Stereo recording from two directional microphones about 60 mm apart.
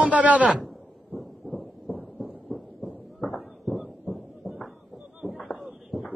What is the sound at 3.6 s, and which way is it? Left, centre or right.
Heart murmur, centre.